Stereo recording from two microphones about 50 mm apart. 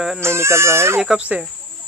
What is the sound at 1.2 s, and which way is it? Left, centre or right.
Speech, right.